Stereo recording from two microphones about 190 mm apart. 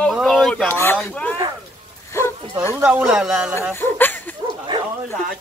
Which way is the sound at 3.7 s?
10° left (ahead or behind).